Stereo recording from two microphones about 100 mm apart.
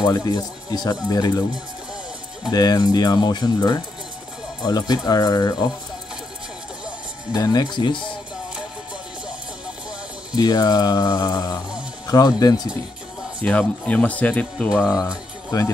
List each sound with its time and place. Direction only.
0.0 s speech: 40° left (ahead or behind)
2.5 s speech: 40° left (ahead or behind)
7.3 s speech: 35° left (ahead or behind)
7.6 s speech: 50° left (ahead or behind)
10.3 s speech: 40° left (ahead or behind)
13.4 s speech: 15° left (ahead or behind)
15.5 s speech: 35° left (ahead or behind)